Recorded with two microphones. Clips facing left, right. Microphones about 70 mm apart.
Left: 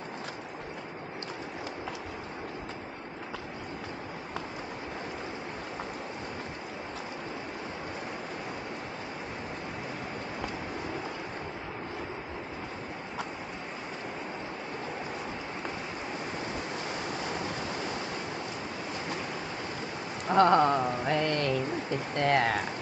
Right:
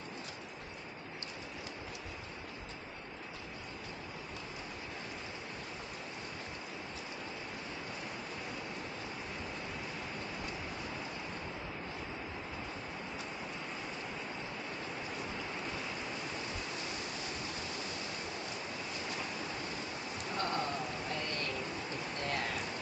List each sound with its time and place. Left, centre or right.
16.9 s waves: left
20.2 s rain: left
20.8 s a sound: left